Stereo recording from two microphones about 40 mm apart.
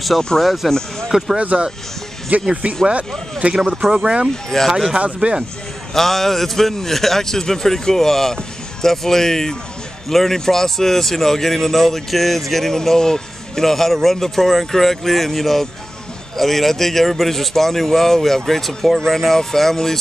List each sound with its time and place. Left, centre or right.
0.4 s speech: centre
0.7 s speech: centre
1.5 s speech: right
3.9 s speech: centre
4.6 s a man's voice: centre
4.9 s speech: right
5.9 s a man's voice: centre